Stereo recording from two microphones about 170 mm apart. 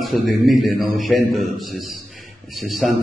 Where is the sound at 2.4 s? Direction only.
Centre (ahead or behind).